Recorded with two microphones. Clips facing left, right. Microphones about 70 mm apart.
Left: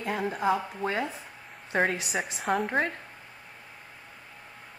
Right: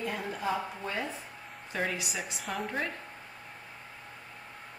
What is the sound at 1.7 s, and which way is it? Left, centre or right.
A woman's voice, left.